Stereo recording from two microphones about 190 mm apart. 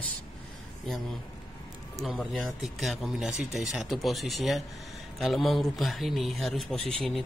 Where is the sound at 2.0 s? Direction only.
Centre (ahead or behind).